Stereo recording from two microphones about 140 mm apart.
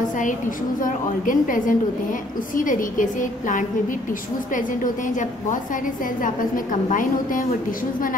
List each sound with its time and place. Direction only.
0.8 s a woman's voice: 75° left (ahead or behind)